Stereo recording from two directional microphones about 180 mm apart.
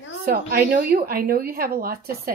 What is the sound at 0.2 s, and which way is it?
A woman's voice, 55° right (ahead or behind).